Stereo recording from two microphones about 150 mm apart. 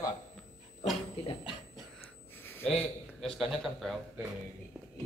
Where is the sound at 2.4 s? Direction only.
15° left (ahead or behind).